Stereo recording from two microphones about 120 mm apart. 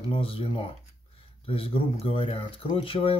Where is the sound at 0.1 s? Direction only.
50° left (ahead or behind).